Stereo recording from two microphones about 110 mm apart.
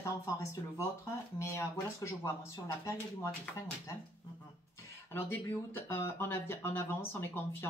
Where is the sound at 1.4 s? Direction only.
25° left (ahead or behind).